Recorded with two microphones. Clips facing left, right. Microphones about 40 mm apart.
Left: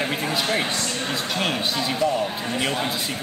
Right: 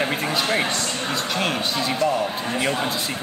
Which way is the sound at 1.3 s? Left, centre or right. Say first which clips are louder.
Even; centre.